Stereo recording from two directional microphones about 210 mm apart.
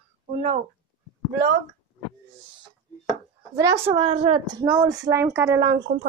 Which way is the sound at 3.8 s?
25° right (ahead or behind).